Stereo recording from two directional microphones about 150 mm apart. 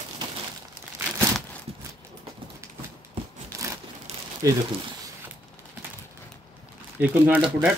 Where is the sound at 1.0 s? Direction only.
10° right (ahead or behind).